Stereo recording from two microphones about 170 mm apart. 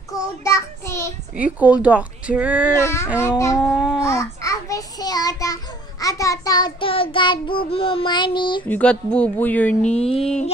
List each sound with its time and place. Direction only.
0.4 s child singing: 20° left (ahead or behind)
1.3 s speech: 10° right (ahead or behind)
2.8 s speech: 15° left (ahead or behind)
3.5 s babbling: centre (ahead or behind)
4.0 s a child's voice: 20° left (ahead or behind)
8.6 s speech: 10° left (ahead or behind)